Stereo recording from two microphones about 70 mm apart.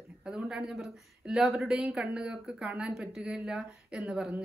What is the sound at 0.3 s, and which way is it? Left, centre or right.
Speech, centre.